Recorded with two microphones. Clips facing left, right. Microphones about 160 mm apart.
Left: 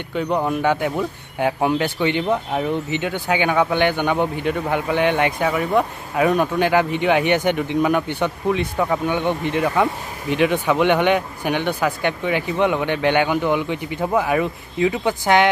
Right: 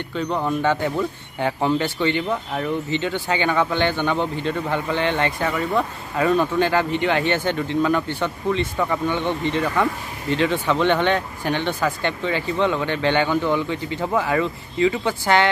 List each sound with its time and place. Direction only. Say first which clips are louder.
0.1 s speech: left 3 dB; 15° left (ahead or behind)